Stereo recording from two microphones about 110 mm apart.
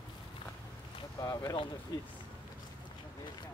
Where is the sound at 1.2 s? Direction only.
35° left (ahead or behind).